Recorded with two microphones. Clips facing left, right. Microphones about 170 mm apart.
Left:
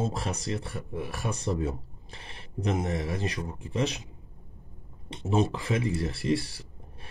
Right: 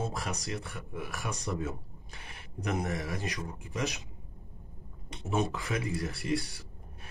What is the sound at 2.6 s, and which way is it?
Speech, 20° left (ahead or behind).